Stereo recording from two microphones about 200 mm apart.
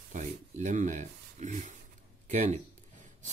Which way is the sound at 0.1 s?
35° right (ahead or behind).